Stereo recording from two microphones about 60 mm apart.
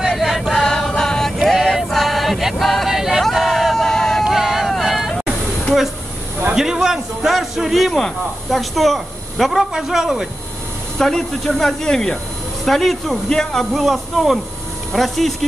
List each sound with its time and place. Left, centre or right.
0.0 s a sound: centre
1.4 s music: centre
4.2 s vehicle: centre
6.5 s a man's voice: centre
11.0 s speech: centre